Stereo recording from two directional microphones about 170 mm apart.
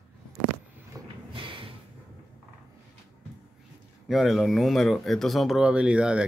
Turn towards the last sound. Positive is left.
turn(degrees=-5)  # may be behind; listen again after turning